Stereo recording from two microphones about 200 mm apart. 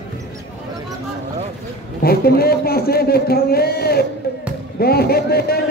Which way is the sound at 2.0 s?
50° left (ahead or behind).